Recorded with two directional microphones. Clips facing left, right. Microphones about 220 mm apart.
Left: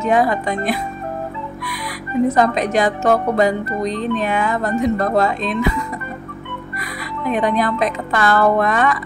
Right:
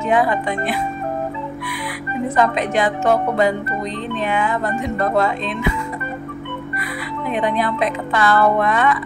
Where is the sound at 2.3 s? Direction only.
40° left (ahead or behind).